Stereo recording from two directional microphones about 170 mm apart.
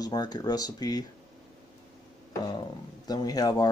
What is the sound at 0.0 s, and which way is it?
Speech, 25° left (ahead or behind).